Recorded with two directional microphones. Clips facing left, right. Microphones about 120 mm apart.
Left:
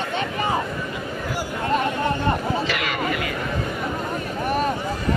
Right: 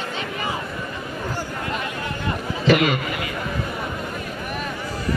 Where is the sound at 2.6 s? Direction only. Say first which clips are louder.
Right 9 dB; 25° right (ahead or behind).